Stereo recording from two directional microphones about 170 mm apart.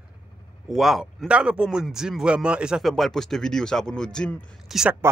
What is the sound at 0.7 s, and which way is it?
A man's voice, centre (ahead or behind).